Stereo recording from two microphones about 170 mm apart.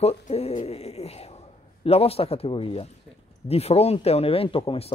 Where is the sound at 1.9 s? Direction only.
35° left (ahead or behind).